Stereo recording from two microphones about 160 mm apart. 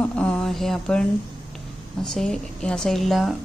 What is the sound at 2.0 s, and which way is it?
A woman's voice, 5° left (ahead or behind).